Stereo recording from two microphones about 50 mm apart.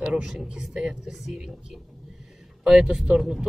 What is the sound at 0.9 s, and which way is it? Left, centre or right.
Speech, centre.